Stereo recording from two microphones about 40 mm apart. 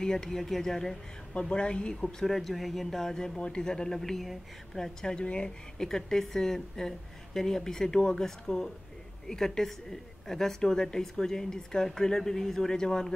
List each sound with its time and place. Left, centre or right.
0.0 s a woman's voice: centre
1.4 s speech: left
2.2 s speech: centre
3.3 s a woman's voice: left
5.1 s speech: left
5.8 s a woman's voice: centre